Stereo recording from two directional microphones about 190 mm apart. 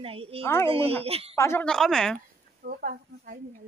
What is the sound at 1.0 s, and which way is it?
Speech, 30° right (ahead or behind).